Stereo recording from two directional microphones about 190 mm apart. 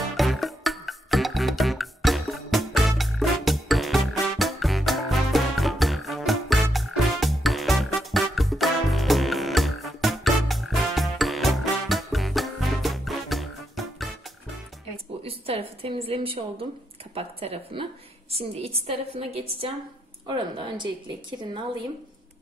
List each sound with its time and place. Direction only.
0.2 s music: centre (ahead or behind)
15.2 s a sound: 30° right (ahead or behind)
17.1 s a woman's voice: 30° right (ahead or behind)